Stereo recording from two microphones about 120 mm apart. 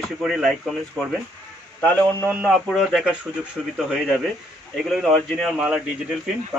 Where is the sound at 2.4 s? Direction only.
Centre (ahead or behind).